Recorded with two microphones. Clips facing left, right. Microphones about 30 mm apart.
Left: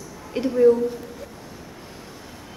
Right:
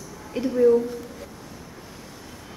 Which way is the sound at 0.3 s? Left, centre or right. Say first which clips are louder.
Left 2 dB; left.